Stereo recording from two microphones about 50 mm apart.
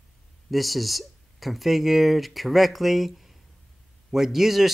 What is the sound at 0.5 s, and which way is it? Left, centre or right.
Speech, centre.